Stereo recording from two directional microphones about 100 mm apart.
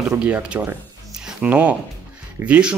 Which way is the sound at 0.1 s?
10° right (ahead or behind).